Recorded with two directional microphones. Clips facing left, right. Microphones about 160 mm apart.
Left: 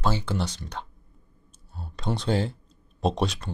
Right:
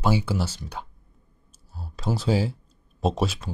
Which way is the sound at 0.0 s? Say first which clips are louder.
Right 3 dB; 10° right (ahead or behind).